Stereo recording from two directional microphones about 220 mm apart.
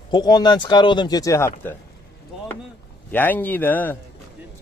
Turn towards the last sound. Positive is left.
turn(degrees=10)  # may be behind; listen again after turning